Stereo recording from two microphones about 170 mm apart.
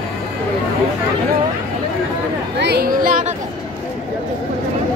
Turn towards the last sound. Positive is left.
turn(degrees=-55)  # may be behind; listen again after turning